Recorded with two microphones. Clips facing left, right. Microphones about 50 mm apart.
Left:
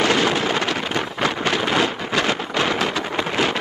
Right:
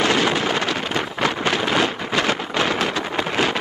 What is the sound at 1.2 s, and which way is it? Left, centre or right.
Wind noise, right.